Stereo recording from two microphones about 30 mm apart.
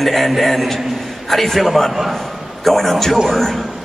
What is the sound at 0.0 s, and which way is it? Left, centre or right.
A man's voice, centre.